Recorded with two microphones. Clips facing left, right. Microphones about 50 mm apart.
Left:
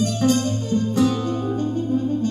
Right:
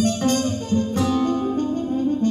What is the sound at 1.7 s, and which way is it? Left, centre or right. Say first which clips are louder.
Brass instrument: even; right.